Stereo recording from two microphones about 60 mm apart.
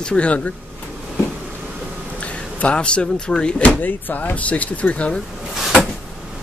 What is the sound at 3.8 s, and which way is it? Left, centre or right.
Speech, left.